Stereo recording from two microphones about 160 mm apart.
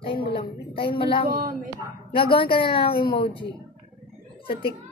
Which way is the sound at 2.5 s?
30° left (ahead or behind).